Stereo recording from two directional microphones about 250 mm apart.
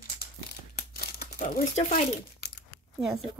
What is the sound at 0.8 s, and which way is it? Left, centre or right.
Crumpling, left.